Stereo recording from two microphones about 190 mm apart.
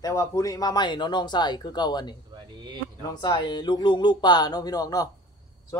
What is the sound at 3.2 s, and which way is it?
Speech, 25° left (ahead or behind).